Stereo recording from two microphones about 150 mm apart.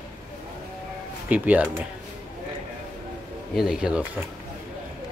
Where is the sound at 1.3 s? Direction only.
10° right (ahead or behind).